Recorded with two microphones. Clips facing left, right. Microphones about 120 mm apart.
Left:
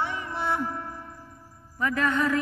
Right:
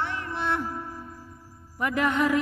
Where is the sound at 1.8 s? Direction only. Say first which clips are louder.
Right 1 dB; 20° right (ahead or behind).